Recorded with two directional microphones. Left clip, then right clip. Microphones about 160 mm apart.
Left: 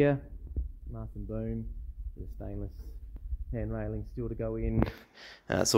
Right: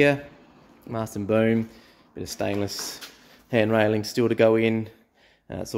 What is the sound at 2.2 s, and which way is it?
Speech, 15° right (ahead or behind).